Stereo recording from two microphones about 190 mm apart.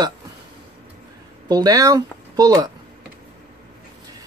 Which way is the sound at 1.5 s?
20° right (ahead or behind).